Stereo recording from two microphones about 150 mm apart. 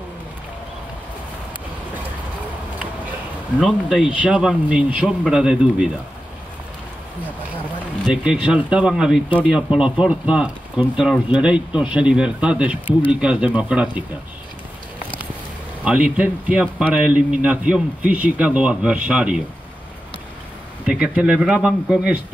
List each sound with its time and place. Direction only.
3.5 s speech: 5° right (ahead or behind)
8.1 s speech: 5° right (ahead or behind)
15.8 s speech: 10° right (ahead or behind)
20.8 s speech: 10° right (ahead or behind)